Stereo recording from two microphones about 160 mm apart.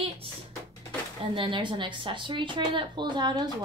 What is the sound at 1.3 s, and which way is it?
Speech, 30° right (ahead or behind).